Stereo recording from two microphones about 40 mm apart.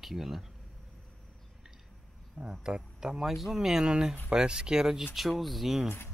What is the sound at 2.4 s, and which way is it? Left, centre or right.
Speech, right.